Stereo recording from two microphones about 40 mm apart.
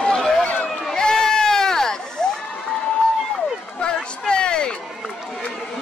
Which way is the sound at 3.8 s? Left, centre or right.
Left.